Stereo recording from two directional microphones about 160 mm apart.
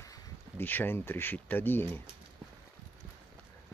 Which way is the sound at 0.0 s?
15° left (ahead or behind).